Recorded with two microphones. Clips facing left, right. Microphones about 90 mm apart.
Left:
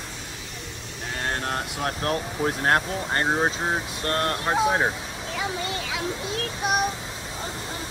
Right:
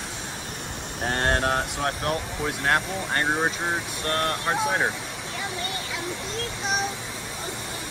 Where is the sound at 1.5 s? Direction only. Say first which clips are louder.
Right 2 dB; 25° right (ahead or behind).